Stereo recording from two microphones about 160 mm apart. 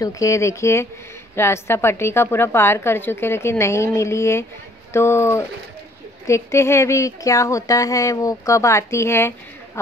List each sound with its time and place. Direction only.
0.0 s a woman's voice: 20° left (ahead or behind)